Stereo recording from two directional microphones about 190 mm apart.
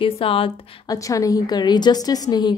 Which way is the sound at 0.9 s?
15° left (ahead or behind).